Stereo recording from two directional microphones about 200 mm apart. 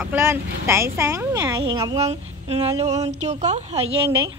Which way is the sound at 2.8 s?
35° right (ahead or behind).